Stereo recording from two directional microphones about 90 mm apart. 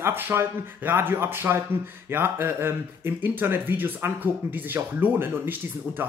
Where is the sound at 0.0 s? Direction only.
25° right (ahead or behind).